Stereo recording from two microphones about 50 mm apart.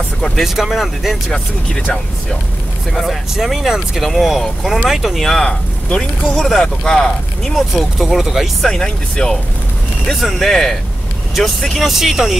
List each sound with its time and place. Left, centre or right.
0.4 s speech: centre
2.9 s speech: centre
5.4 s speech: centre
6.3 s speech: centre
8.6 s speech: centre